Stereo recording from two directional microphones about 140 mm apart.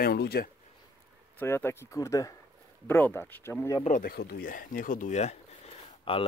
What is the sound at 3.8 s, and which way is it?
Speech, 80° left.